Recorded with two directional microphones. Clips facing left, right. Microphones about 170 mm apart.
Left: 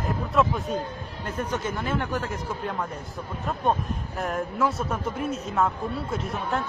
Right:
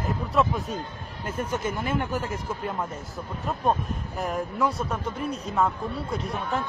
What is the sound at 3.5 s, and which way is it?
Speech, centre (ahead or behind).